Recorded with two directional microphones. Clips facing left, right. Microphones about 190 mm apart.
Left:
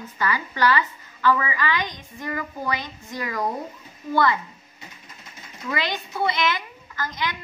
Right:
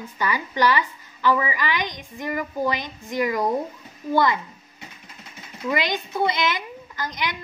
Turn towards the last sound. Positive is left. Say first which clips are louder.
# even
turn(degrees=-15)  # may be behind; listen again after turning